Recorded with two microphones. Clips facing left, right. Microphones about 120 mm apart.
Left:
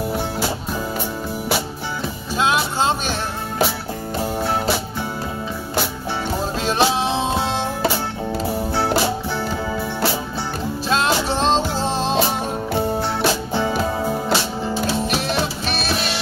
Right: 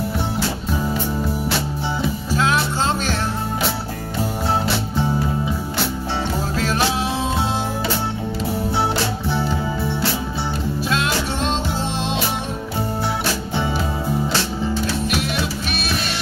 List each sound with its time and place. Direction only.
2.3 s music: 20° left (ahead or behind)
6.6 s music: 25° left (ahead or behind)
10.9 s music: 30° left (ahead or behind)
15.1 s music: 35° left (ahead or behind)